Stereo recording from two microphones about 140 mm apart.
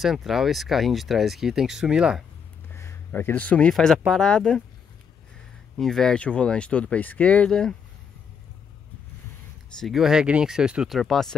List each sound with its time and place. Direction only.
0.0 s speech: centre (ahead or behind)
2.7 s speech: 20° left (ahead or behind)
5.8 s speech: 5° left (ahead or behind)
9.8 s speech: centre (ahead or behind)